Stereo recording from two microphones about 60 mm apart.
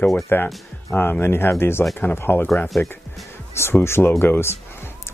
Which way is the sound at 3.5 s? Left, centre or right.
Left.